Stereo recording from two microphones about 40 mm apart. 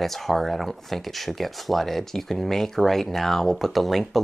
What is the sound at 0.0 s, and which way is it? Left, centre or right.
Speech, centre.